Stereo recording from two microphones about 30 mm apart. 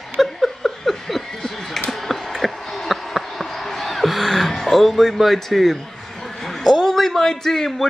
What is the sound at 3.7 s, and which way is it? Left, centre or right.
Music, centre.